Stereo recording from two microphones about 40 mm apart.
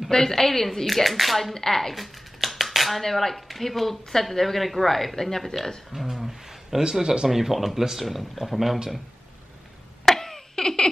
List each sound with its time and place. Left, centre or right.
0.1 s a woman's voice: centre
5.9 s a sound: centre
6.8 s a woman's voice: centre
10.0 s baby laughter: centre